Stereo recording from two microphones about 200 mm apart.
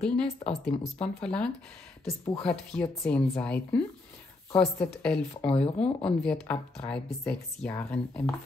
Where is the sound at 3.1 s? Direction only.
5° left (ahead or behind).